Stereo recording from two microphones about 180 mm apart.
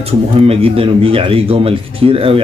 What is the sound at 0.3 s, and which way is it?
Speech, 30° right (ahead or behind).